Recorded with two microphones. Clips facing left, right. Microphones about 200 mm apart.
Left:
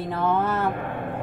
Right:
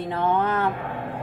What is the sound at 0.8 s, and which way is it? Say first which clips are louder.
Speech: left 1 dB; 55° left (ahead or behind).